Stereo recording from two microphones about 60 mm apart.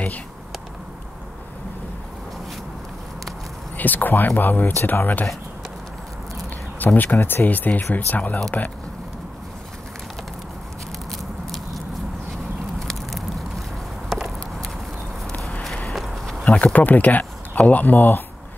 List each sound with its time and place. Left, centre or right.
3.7 s speech: left
6.8 s speech: left
7.4 s speech: left
11.1 s biting: centre
12.8 s a sound: centre
15.9 s a sound: centre
16.4 s speech: left